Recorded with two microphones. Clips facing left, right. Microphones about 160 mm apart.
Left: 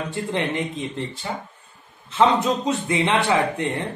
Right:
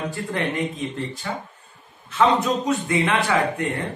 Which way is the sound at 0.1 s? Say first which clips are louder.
Left 1 dB; 25° left (ahead or behind).